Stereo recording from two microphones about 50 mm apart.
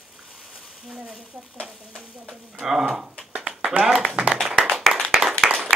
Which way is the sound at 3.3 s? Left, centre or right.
Right.